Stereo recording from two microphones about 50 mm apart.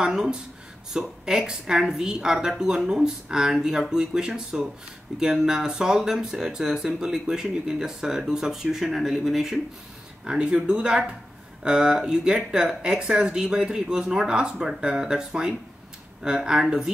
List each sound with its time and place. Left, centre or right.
0.0 s speech: centre
10.2 s speech: centre